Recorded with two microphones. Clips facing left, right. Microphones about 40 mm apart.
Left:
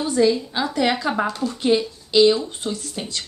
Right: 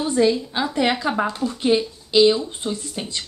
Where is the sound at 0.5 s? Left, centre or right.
Centre.